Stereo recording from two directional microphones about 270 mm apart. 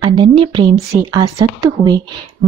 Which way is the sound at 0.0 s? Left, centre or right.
Centre.